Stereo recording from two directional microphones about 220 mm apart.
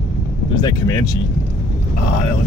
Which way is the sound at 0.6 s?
15° left (ahead or behind).